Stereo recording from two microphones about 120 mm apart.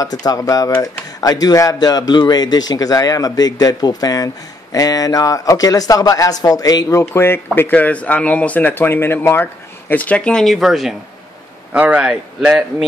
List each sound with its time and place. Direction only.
0.0 s speech: 30° left (ahead or behind); by 12.8 s 10° right (ahead or behind)